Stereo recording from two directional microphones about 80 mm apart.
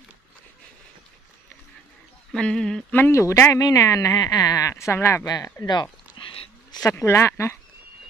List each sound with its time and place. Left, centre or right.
2.3 s speech: centre
3.1 s speech: left
3.5 s speech: left
5.2 s speech: left
5.7 s a sound: left
6.7 s a sound: left
7.1 s speech: left